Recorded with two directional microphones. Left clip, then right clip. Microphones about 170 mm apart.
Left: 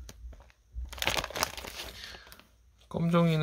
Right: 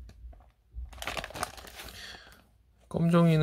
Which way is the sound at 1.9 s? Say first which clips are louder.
Even; 40° right (ahead or behind).